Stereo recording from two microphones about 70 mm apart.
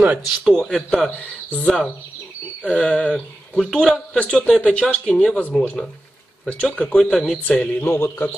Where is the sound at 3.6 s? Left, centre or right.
Centre.